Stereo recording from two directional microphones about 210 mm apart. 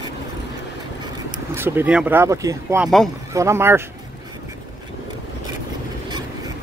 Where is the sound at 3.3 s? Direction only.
15° right (ahead or behind).